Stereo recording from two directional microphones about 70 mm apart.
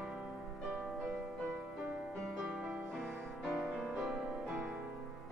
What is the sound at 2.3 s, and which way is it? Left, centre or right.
Music, centre.